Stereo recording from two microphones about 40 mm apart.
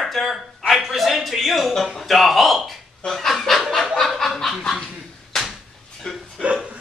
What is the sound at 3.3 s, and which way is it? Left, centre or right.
Snicker, centre.